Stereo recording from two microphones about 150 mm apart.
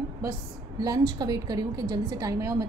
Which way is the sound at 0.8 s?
25° right (ahead or behind).